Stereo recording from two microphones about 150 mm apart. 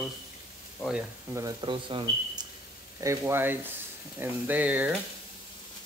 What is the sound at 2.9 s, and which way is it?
Speech, 20° right (ahead or behind).